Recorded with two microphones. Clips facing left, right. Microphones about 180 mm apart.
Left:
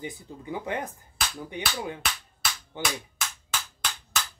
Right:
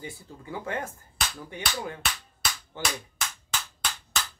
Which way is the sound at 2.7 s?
15° left (ahead or behind).